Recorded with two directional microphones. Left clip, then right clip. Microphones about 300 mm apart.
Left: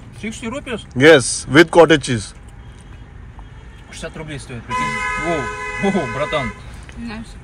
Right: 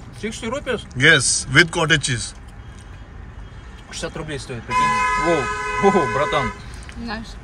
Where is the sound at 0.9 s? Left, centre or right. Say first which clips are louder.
Left 5 dB; centre.